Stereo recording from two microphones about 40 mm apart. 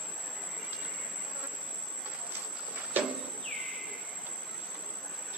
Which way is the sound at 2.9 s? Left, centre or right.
Right.